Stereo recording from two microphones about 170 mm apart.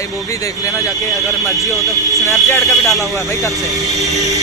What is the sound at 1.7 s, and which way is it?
Speech, 20° right (ahead or behind).